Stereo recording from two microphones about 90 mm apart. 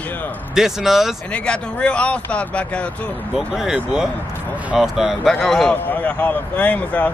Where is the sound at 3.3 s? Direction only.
5° right (ahead or behind).